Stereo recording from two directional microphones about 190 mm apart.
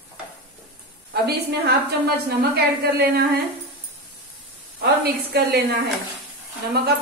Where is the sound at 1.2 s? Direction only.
55° right (ahead or behind).